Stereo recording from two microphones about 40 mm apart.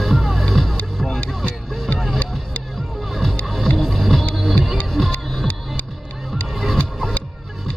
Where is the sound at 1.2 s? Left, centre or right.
Left.